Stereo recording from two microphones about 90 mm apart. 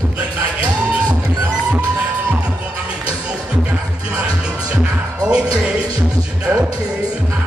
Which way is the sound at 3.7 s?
10° right (ahead or behind).